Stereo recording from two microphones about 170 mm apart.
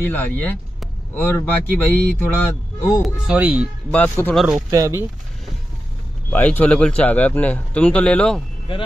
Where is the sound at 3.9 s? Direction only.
10° left (ahead or behind).